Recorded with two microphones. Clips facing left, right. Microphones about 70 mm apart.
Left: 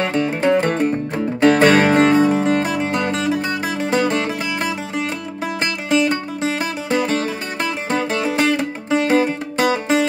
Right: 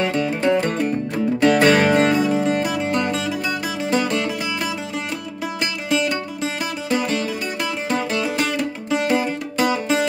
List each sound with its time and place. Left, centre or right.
0.0 s music: left
5.6 s music: left